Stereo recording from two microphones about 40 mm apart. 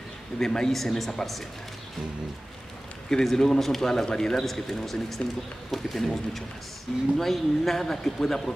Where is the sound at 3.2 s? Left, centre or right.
Centre.